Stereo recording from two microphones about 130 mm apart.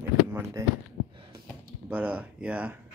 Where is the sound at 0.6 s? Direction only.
20° right (ahead or behind).